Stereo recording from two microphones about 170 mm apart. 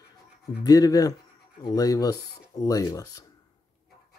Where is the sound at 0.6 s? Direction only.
20° left (ahead or behind).